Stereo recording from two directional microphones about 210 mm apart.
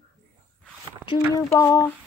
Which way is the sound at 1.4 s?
15° left (ahead or behind).